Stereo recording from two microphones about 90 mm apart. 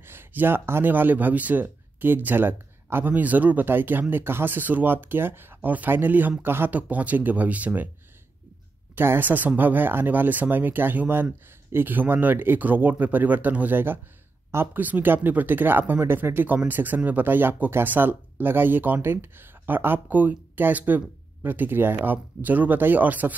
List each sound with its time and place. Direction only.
0.0 s speech: 25° right (ahead or behind)
8.9 s speech: 25° right (ahead or behind)